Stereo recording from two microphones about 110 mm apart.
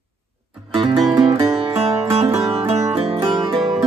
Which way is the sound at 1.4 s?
60° right (ahead or behind).